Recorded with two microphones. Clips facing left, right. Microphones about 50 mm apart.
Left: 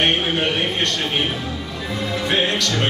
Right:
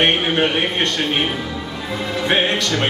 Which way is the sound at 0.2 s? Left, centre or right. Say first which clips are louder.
Right 3 dB; right.